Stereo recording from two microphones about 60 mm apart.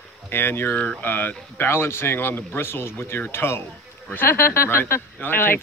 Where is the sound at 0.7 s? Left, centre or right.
Centre.